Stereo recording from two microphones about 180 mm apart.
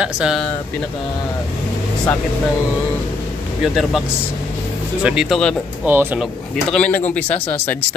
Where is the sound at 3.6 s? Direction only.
Centre (ahead or behind).